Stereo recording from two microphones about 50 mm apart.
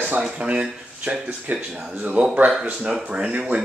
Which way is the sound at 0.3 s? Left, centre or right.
Right.